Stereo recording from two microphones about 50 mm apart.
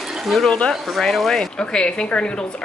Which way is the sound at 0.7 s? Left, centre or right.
Centre.